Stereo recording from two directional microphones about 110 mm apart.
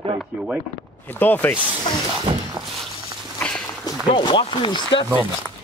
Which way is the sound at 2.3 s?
50° right (ahead or behind).